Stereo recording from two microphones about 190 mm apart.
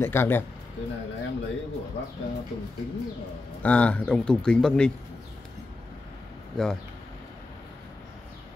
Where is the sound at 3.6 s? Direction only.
5° left (ahead or behind).